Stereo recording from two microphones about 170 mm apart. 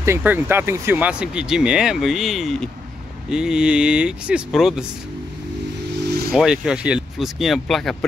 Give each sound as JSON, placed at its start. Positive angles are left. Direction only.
{"t": 0.0, "sound": "speech", "side_deg": -15}
{"t": 6.0, "sound": "vehicle", "side_deg": -70}
{"t": 6.3, "sound": "speech", "side_deg": -5}